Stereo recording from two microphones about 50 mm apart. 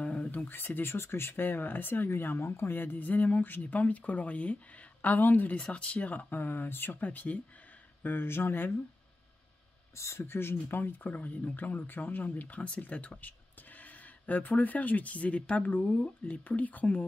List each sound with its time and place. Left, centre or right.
0.0 s a sound: left
0.5 s speech: left
5.5 s speech: left
8.0 s speech: left
8.5 s speech: left
9.9 s speech: left